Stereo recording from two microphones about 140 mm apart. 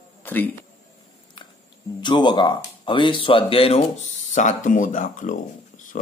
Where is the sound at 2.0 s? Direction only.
35° left (ahead or behind).